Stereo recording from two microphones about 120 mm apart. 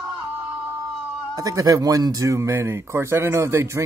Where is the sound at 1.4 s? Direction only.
30° right (ahead or behind).